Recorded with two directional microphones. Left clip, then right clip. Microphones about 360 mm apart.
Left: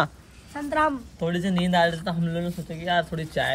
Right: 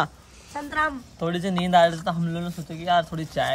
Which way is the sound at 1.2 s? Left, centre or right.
Centre.